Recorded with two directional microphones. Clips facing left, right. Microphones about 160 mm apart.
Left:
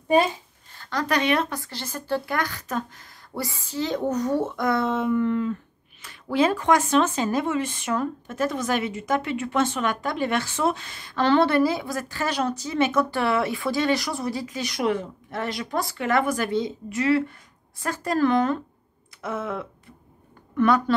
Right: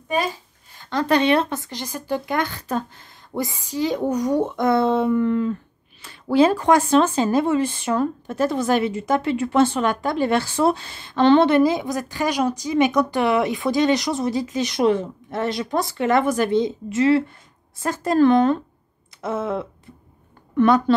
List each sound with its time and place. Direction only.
0.7 s speech: 20° right (ahead or behind)